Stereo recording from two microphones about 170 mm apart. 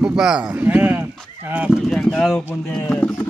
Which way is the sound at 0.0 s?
5° right (ahead or behind).